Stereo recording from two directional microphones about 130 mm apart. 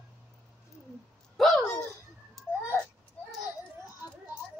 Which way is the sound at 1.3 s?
Centre (ahead or behind).